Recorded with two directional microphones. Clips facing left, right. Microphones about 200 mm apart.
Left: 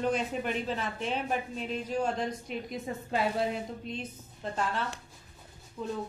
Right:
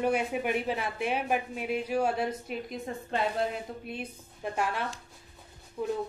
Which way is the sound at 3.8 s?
10° right (ahead or behind).